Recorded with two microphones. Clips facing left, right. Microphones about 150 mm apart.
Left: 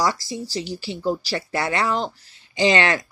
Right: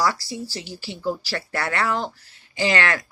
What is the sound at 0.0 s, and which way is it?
Speech, 20° left (ahead or behind).